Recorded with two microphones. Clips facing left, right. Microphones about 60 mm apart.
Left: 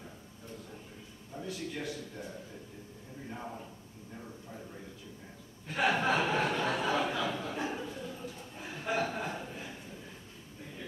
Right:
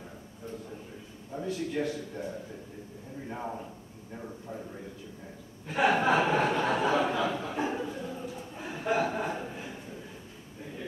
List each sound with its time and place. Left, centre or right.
1.3 s a man's voice: right
3.3 s a man's voice: right
5.7 s chuckle: centre